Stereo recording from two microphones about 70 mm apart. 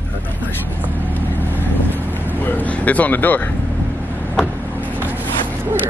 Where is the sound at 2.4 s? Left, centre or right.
Left.